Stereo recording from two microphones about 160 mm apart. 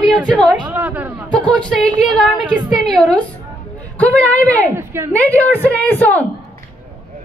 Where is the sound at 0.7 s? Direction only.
10° right (ahead or behind).